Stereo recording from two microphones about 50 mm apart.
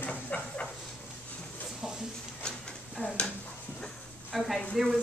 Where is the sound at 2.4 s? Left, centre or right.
Centre.